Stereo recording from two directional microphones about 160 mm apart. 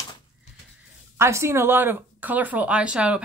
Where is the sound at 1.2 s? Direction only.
15° right (ahead or behind).